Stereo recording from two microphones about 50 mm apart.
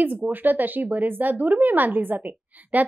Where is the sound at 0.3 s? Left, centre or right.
Right.